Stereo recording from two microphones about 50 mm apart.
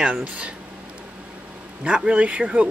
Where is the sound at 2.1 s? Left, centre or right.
Right.